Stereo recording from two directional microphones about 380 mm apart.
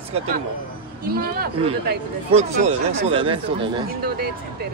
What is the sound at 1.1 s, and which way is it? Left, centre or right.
Speech, right.